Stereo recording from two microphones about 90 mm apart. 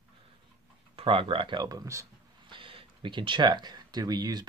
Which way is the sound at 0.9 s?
90° right.